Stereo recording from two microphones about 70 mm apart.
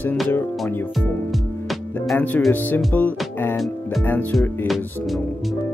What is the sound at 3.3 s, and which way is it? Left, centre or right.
Music, left.